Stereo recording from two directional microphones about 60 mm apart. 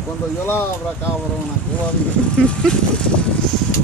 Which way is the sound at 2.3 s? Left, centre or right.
Centre.